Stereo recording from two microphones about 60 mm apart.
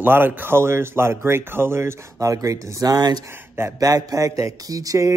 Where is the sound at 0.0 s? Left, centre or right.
Right.